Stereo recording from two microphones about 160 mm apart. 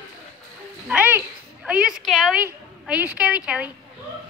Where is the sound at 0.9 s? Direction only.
10° right (ahead or behind).